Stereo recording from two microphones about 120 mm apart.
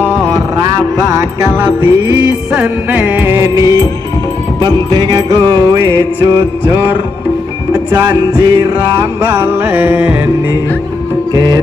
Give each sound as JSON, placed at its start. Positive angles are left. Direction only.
{"t": 1.4, "sound": "music", "side_deg": -25}
{"t": 4.6, "sound": "music", "side_deg": -40}
{"t": 7.9, "sound": "music", "side_deg": -25}
{"t": 11.3, "sound": "music", "side_deg": -30}